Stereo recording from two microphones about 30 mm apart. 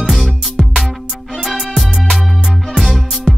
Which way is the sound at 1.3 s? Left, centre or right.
Centre.